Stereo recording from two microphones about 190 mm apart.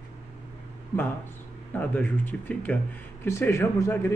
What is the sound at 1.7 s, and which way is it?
A man's voice, 10° left (ahead or behind).